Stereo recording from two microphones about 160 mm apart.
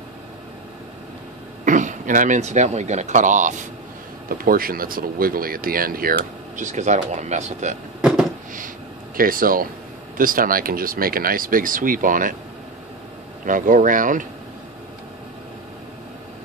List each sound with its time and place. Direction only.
1.6 s speech: 55° right (ahead or behind)
4.3 s speech: 65° right (ahead or behind); by 7.8 s 45° right (ahead or behind)
8.5 s a sound: 60° right (ahead or behind)
10.1 s speech: 60° right (ahead or behind)
13.5 s speech: 55° right (ahead or behind)